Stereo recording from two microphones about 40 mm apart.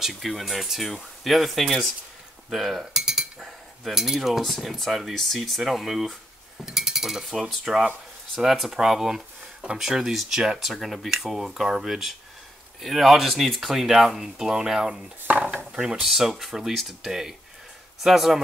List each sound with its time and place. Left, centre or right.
0.1 s speech: centre
2.5 s cutlery: centre
3.4 s speech: centre
6.6 s cutlery: centre
8.4 s speech: centre
10.7 s speech: centre
15.2 s dishes: right
15.5 s dishes: centre
16.3 s speech: centre